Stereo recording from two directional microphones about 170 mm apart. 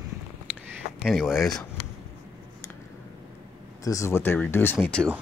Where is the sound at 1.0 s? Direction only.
Centre (ahead or behind).